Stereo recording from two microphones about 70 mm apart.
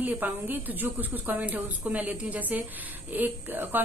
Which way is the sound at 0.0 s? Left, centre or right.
Right.